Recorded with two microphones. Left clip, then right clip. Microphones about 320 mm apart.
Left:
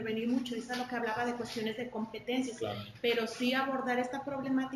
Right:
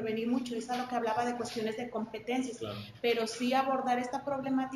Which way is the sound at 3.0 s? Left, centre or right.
Centre.